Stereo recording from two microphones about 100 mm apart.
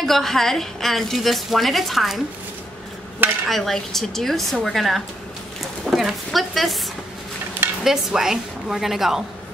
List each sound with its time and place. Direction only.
0.0 s a woman's voice: 5° left (ahead or behind)
3.4 s a woman's voice: centre (ahead or behind)
7.8 s a woman's voice: 5° right (ahead or behind)